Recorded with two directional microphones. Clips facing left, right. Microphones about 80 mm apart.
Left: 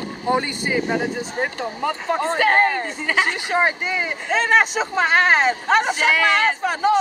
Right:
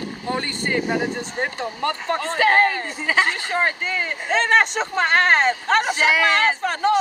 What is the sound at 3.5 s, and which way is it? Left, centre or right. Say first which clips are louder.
Speech: left 2 dB; centre.